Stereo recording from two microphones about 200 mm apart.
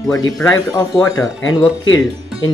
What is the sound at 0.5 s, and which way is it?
Speech, 15° left (ahead or behind).